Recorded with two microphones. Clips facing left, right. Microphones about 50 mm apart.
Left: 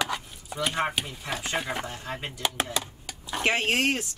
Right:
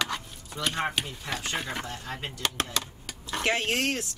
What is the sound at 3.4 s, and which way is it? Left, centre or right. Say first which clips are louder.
Speech: left 3 dB; centre.